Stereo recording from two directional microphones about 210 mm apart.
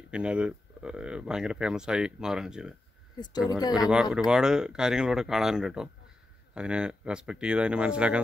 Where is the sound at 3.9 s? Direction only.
5° right (ahead or behind).